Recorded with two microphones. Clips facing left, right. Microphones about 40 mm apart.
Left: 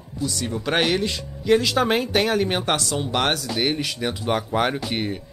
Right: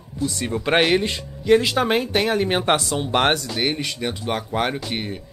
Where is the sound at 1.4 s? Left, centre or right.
Centre.